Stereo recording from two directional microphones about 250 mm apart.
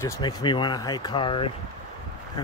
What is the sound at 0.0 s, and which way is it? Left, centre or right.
Speech, centre.